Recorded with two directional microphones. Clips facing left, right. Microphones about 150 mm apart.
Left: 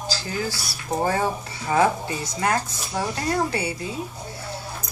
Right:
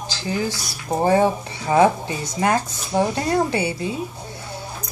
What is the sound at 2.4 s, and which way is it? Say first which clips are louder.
Speech: right 4 dB; 25° right (ahead or behind).